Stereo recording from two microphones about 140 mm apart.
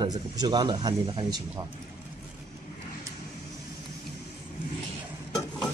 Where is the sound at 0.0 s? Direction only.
30° right (ahead or behind).